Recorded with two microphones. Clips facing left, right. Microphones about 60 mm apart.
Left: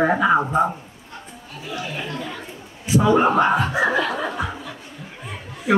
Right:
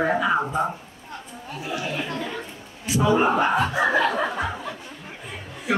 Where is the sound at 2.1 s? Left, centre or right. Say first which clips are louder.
Right 1 dB; centre.